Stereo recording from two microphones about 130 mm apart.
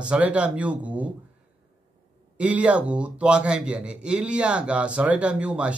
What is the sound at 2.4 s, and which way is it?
A man's voice, 10° right (ahead or behind).